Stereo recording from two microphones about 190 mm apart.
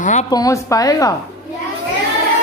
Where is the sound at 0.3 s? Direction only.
20° left (ahead or behind).